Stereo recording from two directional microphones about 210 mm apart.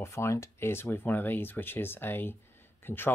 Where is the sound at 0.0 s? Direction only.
10° left (ahead or behind).